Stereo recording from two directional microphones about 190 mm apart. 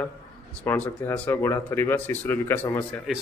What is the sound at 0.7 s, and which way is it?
Speech, 10° left (ahead or behind).